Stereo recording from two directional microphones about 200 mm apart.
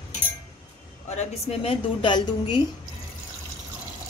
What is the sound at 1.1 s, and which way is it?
Speech, 30° left (ahead or behind).